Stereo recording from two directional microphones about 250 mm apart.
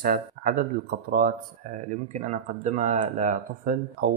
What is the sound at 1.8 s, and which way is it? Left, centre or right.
Speech, right.